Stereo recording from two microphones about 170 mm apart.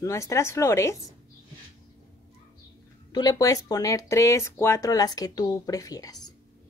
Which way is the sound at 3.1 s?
20° left (ahead or behind).